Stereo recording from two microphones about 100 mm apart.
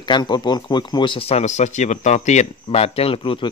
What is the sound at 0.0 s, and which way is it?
Speech, 50° left (ahead or behind).